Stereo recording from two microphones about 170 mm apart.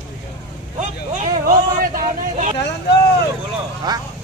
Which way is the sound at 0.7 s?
45° right (ahead or behind).